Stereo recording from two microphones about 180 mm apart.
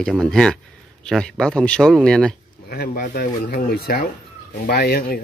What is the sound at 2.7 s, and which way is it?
Speech, 60° left (ahead or behind).